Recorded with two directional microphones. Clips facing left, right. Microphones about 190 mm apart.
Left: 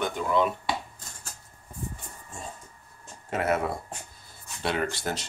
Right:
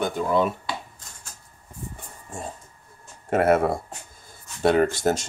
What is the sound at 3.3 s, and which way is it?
Speech, 50° right (ahead or behind).